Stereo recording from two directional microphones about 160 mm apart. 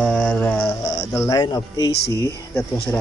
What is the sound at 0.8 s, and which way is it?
Speech, 25° left (ahead or behind).